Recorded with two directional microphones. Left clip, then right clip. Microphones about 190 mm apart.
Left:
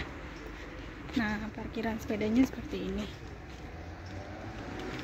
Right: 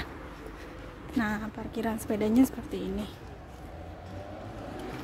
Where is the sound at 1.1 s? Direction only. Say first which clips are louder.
Right 2 dB; 10° right (ahead or behind).